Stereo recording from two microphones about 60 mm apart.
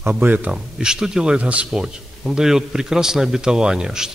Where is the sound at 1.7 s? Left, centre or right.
Centre.